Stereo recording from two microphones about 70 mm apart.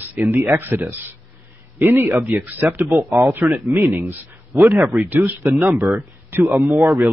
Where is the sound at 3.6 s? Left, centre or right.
Right.